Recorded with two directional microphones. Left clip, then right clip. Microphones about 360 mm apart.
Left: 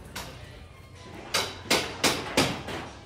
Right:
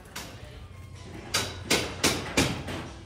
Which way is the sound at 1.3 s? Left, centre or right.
Left.